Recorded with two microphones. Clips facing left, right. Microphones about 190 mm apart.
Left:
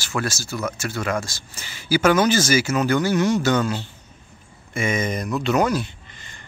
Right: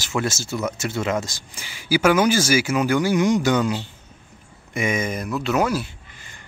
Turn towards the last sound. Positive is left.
turn(degrees=-10)  # may be behind; listen again after turning